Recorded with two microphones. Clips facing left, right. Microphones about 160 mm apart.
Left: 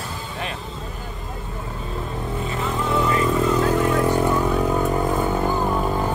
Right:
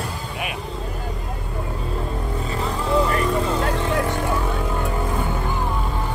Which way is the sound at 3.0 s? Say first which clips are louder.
Left 1 dB; 30° right (ahead or behind).